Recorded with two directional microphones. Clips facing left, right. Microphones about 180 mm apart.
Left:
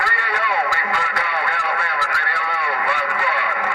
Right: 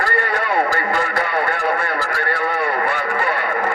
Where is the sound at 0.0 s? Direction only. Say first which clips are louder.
Right 4 dB; 45° right (ahead or behind).